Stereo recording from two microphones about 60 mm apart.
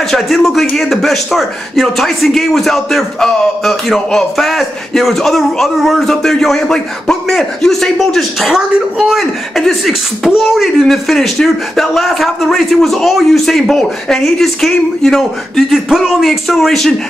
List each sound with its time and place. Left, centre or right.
0.0 s speech: centre